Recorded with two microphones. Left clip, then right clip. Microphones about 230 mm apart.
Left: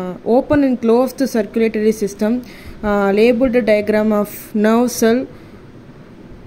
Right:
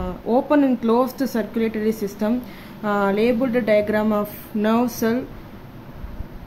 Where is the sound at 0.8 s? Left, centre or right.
Centre.